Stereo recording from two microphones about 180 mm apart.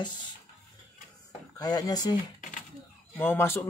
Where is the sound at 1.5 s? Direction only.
20° left (ahead or behind).